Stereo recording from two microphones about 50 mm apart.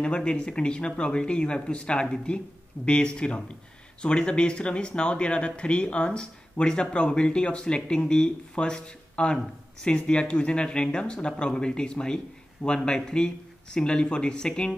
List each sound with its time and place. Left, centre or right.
0.0 s speech: centre